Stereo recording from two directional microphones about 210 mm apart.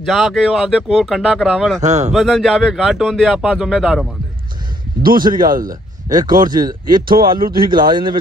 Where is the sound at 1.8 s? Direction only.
35° right (ahead or behind).